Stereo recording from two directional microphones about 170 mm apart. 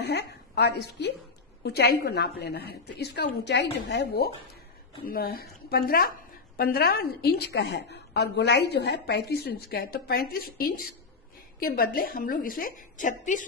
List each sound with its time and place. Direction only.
0.0 s a woman's voice: 75° left (ahead or behind)
5.0 s a woman's voice: 60° left (ahead or behind)